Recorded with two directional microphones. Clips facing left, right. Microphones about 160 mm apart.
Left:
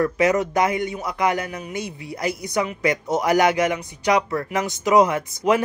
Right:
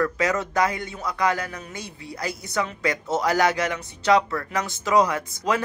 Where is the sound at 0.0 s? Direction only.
20° left (ahead or behind).